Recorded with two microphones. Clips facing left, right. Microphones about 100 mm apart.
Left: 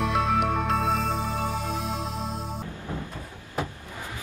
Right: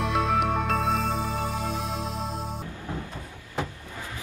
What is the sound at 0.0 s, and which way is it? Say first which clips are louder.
Music: even; centre (ahead or behind).